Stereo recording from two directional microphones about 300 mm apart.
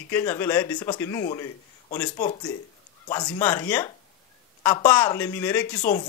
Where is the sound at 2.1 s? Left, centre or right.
Left.